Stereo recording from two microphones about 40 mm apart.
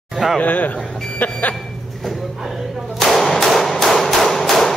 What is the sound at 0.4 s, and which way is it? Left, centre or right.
Speech, left.